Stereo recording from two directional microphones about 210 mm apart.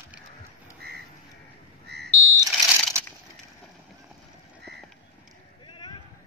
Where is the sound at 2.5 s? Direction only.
Centre (ahead or behind).